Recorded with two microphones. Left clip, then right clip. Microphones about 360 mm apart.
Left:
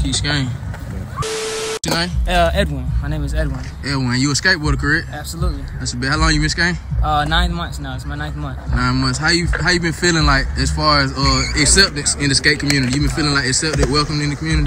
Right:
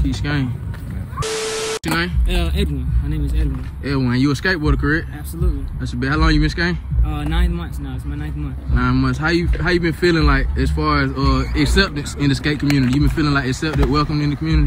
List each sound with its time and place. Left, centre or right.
0.0 s speech: centre
8.7 s speech: centre